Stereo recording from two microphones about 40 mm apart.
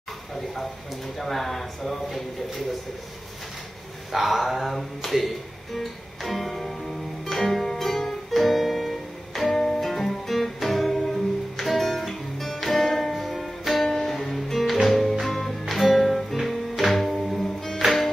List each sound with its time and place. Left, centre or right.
1.1 s speech: centre
4.1 s speech: centre
5.1 s music: centre
13.8 s music: centre